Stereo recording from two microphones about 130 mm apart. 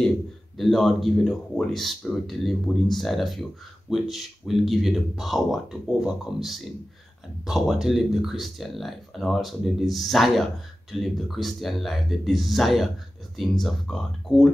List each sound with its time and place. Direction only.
0.6 s speech: centre (ahead or behind)